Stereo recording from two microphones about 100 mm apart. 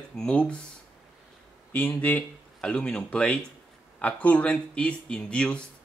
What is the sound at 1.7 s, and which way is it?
Speech, 15° left (ahead or behind).